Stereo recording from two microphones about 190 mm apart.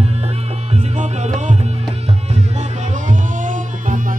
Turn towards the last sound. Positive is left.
turn(degrees=-40)  # may be behind; listen again after turning